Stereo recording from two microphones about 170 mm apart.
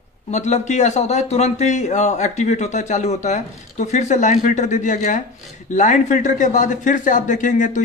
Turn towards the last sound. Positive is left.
turn(degrees=45)  # may be behind; listen again after turning